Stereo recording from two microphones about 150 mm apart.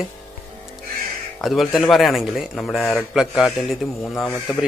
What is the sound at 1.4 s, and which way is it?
Speech, centre (ahead or behind).